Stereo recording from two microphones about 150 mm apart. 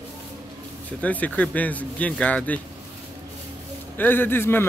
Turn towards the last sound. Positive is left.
turn(degrees=15)  # may be behind; listen again after turning